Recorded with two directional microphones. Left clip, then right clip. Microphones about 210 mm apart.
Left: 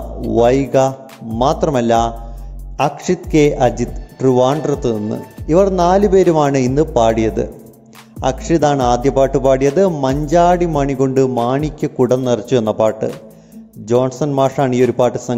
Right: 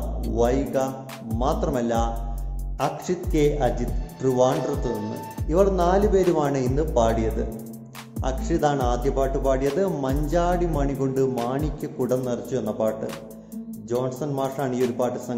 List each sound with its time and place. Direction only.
0.3 s speech: 40° left (ahead or behind)